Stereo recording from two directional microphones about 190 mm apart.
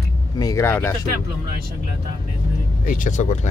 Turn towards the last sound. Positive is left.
turn(degrees=40)  # may be behind; listen again after turning